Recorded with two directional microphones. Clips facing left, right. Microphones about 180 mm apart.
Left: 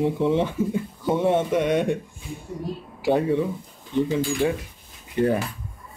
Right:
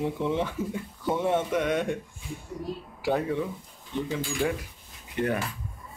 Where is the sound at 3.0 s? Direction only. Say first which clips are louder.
Left 6 dB; 25° left (ahead or behind).